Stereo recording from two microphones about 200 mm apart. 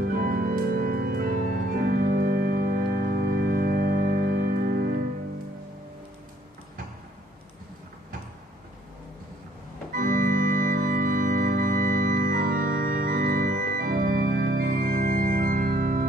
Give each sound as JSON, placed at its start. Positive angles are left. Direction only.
{"t": 0.1, "sound": "organ", "side_deg": -45}
{"t": 9.9, "sound": "organ", "side_deg": -45}